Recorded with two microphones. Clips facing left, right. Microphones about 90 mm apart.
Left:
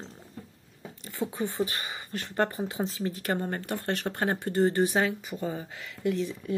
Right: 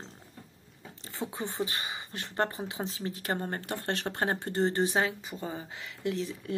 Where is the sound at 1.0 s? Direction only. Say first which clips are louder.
Left 5 dB; 25° right (ahead or behind).